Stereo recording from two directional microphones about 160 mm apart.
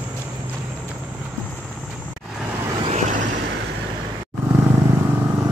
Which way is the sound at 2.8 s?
45° right (ahead or behind).